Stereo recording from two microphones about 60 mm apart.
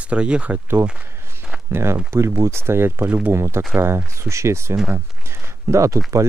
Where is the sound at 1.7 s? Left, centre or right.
Right.